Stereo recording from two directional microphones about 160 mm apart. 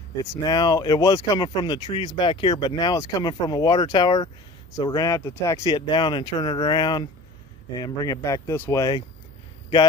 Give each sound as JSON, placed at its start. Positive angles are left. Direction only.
{"t": 0.2, "sound": "speech", "side_deg": 25}